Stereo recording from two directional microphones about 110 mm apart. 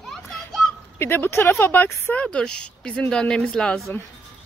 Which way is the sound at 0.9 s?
20° left (ahead or behind).